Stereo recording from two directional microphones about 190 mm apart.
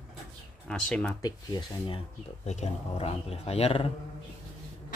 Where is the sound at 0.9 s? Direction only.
5° left (ahead or behind).